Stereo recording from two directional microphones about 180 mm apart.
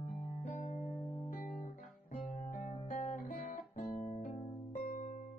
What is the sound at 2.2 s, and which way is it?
Guitar, 45° left (ahead or behind).